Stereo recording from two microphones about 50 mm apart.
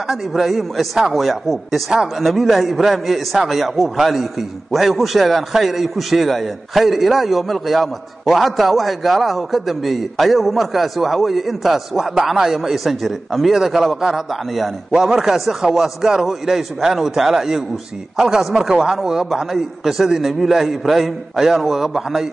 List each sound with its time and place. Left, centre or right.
0.1 s a man's voice: centre